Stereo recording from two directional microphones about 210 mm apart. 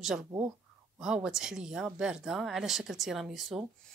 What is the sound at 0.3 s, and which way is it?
Speech, 15° right (ahead or behind).